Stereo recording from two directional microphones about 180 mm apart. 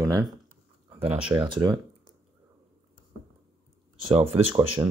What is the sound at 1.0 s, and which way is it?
Speech, 30° right (ahead or behind).